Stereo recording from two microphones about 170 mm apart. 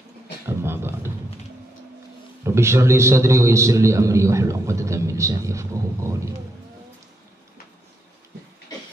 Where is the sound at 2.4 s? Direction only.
15° right (ahead or behind).